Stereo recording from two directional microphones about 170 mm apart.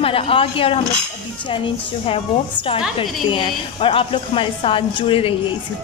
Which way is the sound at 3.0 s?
30° left (ahead or behind).